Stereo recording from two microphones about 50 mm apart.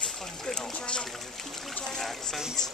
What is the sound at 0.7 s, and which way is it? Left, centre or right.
Speech, centre.